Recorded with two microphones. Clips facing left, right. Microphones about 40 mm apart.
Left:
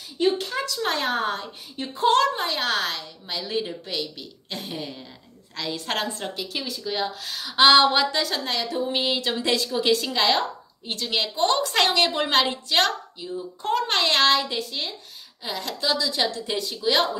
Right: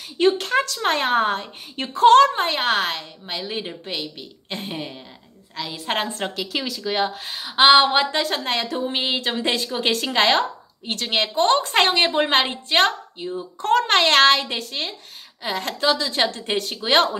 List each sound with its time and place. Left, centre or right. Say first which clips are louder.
0.3 s a woman's voice: right 5 dB; right
1.8 s a woman's voice: right 8 dB; right
2.2 s a woman's voice: right 4 dB; right
5.6 s a woman's voice: even; centre
6.0 s a woman's voice: right 3 dB; right
7.2 s a woman's voice: right 2 dB; right
13.6 s a woman's voice: right 6 dB; right